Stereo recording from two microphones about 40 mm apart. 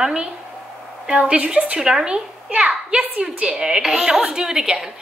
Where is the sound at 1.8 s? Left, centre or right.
Centre.